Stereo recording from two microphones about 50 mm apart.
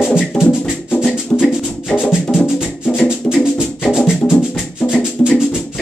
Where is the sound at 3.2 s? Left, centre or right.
Left.